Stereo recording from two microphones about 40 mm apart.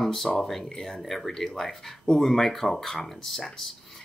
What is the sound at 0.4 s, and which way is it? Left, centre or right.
Speech, centre.